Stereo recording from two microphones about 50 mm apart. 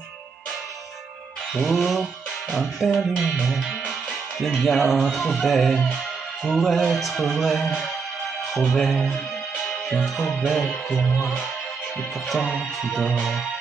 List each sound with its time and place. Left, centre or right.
1.5 s music: centre
12.9 s music: centre